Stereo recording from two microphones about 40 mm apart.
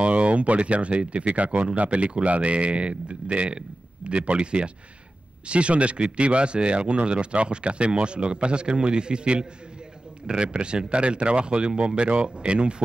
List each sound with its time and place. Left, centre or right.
0.0 s speech: right